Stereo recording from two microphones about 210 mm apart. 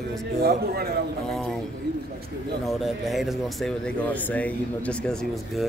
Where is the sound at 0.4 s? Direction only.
50° right (ahead or behind).